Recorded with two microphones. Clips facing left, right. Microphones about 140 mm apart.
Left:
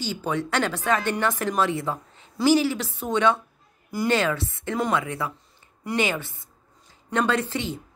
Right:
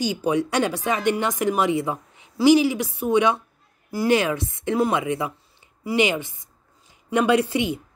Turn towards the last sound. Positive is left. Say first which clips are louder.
# right 6 dB
turn(degrees=-15)  # may be behind; listen again after turning